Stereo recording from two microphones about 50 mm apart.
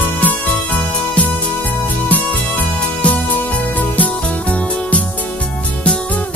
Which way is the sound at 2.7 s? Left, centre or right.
Left.